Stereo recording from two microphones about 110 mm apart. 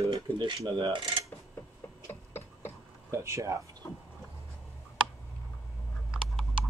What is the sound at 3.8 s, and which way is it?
Chicken, 30° left (ahead or behind).